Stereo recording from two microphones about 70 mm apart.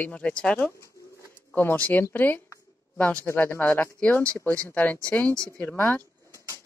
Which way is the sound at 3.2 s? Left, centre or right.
Left.